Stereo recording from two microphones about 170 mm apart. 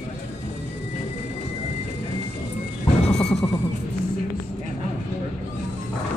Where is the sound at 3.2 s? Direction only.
Centre (ahead or behind).